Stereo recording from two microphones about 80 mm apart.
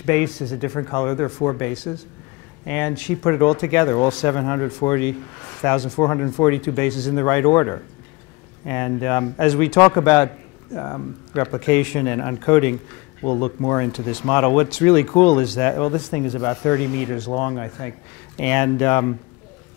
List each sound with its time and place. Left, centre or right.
0.0 s a man's voice: centre
2.6 s a man's voice: centre
5.9 s a man's voice: left